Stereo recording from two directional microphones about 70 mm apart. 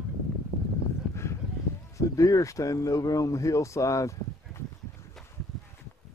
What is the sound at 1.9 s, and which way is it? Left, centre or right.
Speech, left.